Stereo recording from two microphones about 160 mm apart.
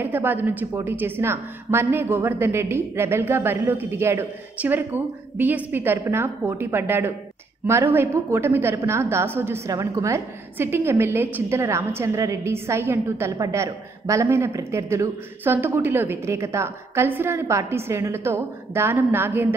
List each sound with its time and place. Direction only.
0.0 s a woman's voice: 10° right (ahead or behind)